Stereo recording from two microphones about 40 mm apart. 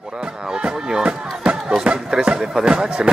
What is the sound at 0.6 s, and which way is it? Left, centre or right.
Music, right.